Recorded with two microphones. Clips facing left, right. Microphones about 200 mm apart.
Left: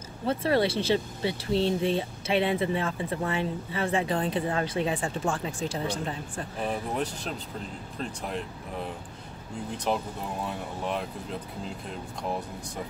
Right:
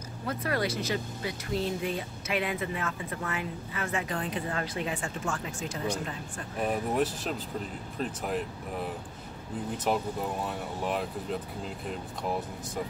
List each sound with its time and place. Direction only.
0.3 s speech: 30° left (ahead or behind)
6.6 s speech: 5° right (ahead or behind)
9.9 s speech: 5° right (ahead or behind)